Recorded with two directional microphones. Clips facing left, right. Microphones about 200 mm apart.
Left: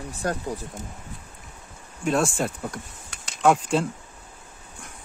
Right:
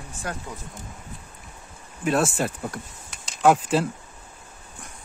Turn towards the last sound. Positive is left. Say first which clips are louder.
# right 1 dB
turn(degrees=-5)  # may be behind; listen again after turning